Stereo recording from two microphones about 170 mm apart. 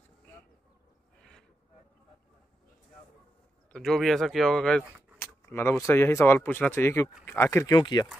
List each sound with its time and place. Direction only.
3.7 s speech: centre (ahead or behind); by 8.1 s 25° left (ahead or behind)